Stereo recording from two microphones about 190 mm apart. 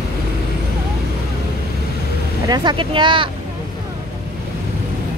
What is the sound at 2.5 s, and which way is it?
Speech, 25° right (ahead or behind).